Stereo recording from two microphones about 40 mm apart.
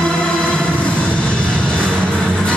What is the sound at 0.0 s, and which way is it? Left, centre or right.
Music, left.